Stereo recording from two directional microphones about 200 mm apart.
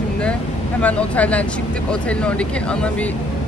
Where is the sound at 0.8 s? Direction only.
5° left (ahead or behind).